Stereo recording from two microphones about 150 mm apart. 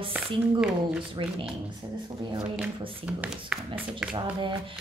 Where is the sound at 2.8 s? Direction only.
35° right (ahead or behind).